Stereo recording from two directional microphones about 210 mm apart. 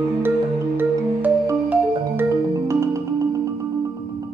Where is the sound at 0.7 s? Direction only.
10° right (ahead or behind).